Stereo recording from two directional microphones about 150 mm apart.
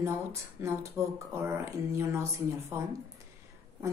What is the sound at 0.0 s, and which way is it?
Speech, 20° right (ahead or behind).